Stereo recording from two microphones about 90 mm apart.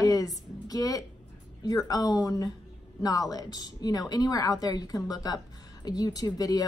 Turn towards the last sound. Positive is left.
turn(degrees=45)  # may be behind; listen again after turning